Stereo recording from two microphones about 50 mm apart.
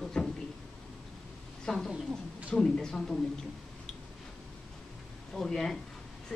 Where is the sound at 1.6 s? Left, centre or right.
Centre.